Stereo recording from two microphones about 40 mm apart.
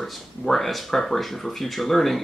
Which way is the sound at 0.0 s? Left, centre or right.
Centre.